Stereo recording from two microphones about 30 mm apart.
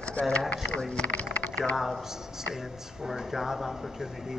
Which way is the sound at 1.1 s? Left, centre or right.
Left.